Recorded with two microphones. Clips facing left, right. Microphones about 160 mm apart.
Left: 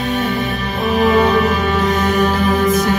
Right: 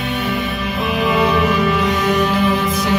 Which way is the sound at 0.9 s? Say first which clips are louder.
Left 4 dB; 45° left (ahead or behind).